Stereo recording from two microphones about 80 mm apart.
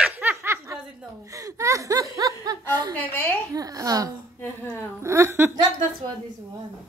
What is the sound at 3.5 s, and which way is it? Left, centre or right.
Speech, right.